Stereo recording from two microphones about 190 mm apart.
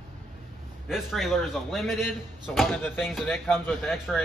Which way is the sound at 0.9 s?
Centre (ahead or behind).